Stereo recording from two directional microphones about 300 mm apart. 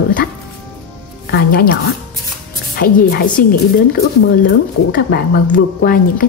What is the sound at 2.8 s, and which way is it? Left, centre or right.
Speech, left.